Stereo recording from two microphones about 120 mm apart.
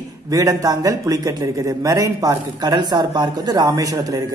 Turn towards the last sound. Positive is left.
turn(degrees=-30)  # may be behind; listen again after turning